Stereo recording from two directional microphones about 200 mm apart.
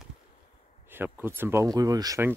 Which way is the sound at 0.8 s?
10° right (ahead or behind).